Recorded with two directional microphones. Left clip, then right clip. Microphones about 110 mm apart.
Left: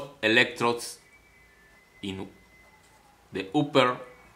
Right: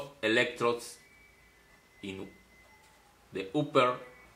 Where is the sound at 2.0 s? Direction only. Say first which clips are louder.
Left 5 dB; 40° left (ahead or behind).